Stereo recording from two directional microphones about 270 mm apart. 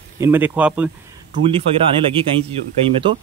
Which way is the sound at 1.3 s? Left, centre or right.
Right.